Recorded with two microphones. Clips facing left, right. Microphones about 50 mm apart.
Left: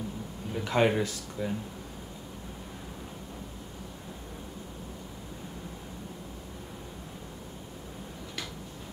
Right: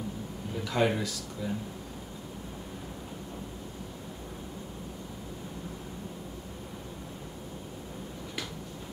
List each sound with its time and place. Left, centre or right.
0.7 s speech: left